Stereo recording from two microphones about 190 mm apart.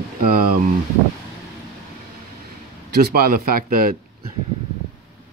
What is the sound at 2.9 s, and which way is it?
Speech, 55° right (ahead or behind).